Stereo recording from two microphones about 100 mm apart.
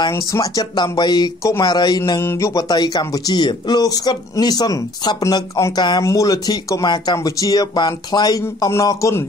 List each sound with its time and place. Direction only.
0.1 s speech: 35° left (ahead or behind)
0.7 s speech: 45° left (ahead or behind); by 2.6 s 30° left (ahead or behind)
2.7 s speech: 45° left (ahead or behind)
6.0 s speech: 35° left (ahead or behind)